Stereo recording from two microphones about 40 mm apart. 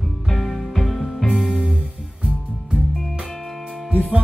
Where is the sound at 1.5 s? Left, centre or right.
Right.